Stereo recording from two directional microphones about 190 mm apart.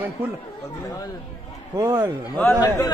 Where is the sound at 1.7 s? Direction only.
20° right (ahead or behind).